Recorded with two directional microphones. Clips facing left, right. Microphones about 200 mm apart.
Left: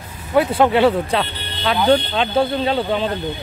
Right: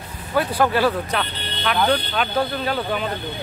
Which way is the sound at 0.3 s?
25° left (ahead or behind).